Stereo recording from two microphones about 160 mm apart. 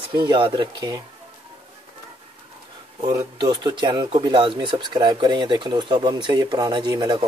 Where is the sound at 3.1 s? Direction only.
25° right (ahead or behind).